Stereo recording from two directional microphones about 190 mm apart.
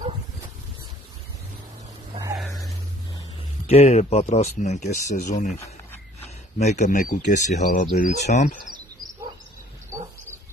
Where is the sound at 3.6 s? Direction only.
35° left (ahead or behind).